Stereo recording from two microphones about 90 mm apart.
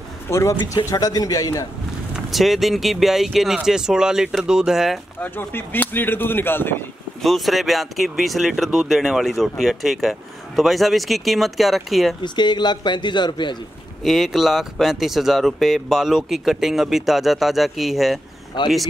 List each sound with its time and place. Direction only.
0.3 s a man's voice: 35° left (ahead or behind)
2.1 s speech: centre (ahead or behind)
5.2 s speech: 20° left (ahead or behind)
7.2 s speech: centre (ahead or behind)
12.2 s a man's voice: 55° left (ahead or behind)
14.0 s speech: centre (ahead or behind)
18.6 s a man's voice: 55° left (ahead or behind)